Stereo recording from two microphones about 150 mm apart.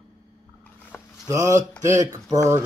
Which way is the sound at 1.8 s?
20° right (ahead or behind).